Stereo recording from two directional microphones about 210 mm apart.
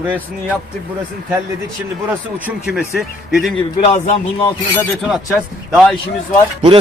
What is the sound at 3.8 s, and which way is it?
Speech, 30° left (ahead or behind).